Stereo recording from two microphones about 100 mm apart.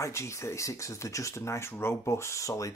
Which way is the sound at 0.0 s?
30° left (ahead or behind).